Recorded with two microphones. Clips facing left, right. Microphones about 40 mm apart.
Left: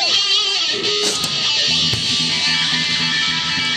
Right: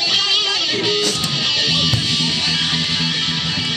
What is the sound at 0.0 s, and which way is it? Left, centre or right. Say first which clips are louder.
Music: even; centre.